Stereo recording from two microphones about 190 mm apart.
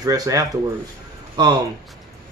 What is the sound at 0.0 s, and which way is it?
A man's voice, 20° right (ahead or behind).